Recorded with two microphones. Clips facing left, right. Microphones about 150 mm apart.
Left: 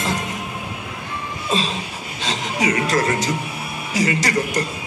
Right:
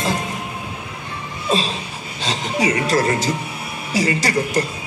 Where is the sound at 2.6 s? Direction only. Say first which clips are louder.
Right 1 dB; 30° right (ahead or behind).